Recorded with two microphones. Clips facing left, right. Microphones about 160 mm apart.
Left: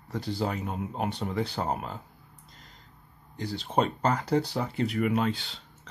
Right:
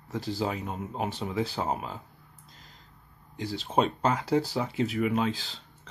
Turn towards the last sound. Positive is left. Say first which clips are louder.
# left 1 dB
turn(degrees=0)  # may be behind; listen again after turning